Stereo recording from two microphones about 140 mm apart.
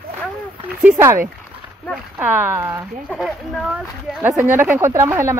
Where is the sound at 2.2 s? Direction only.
15° right (ahead or behind).